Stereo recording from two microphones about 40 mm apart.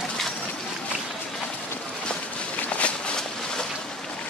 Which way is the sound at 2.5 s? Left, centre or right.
Left.